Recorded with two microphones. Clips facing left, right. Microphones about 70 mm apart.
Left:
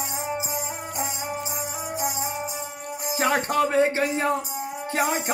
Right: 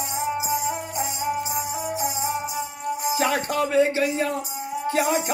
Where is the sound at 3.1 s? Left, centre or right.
Left.